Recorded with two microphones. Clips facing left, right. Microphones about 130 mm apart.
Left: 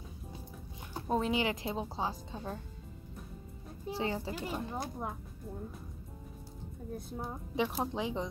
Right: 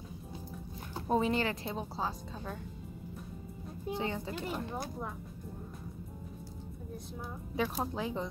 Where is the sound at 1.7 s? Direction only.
20° left (ahead or behind).